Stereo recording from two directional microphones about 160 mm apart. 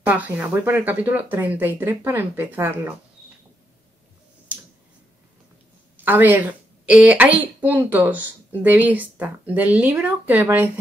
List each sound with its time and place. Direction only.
0.0 s speech: 10° right (ahead or behind)
5.9 s a woman's voice: 10° right (ahead or behind)